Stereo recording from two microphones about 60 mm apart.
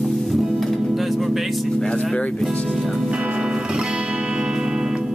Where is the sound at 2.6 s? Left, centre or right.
Centre.